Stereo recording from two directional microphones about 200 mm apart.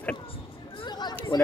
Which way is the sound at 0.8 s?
20° left (ahead or behind).